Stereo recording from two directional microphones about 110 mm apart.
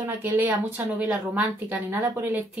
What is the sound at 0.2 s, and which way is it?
Speech, 15° right (ahead or behind).